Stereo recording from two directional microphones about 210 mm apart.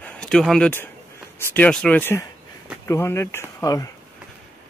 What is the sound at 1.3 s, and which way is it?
Speech, 5° left (ahead or behind).